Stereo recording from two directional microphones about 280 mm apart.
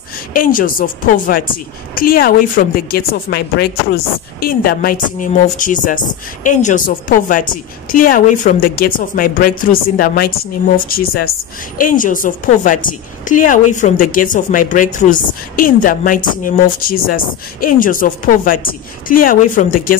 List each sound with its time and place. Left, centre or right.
0.3 s a woman's voice: left